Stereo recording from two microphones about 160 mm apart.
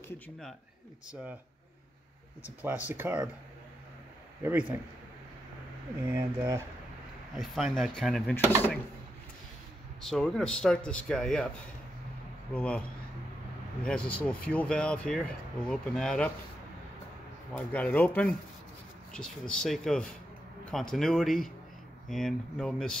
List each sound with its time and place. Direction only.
2.6 s speech: 10° right (ahead or behind)
4.4 s speech: 15° right (ahead or behind)
6.0 s speech: 15° right (ahead or behind)
7.3 s speech: centre (ahead or behind)
10.0 s speech: 5° left (ahead or behind)
12.5 s a man's voice: 5° left (ahead or behind)
13.8 s speech: 5° left (ahead or behind)
17.6 s a man's voice: 10° left (ahead or behind)